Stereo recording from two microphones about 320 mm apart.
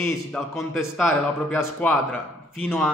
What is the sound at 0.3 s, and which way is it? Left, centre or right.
A man's voice, centre.